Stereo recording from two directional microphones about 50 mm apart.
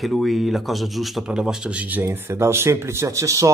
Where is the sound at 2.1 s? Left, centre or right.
Right.